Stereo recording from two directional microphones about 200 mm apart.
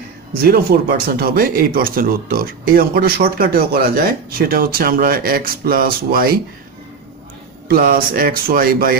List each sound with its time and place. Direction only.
0.4 s speech: 50° right (ahead or behind)
7.6 s speech: 50° right (ahead or behind)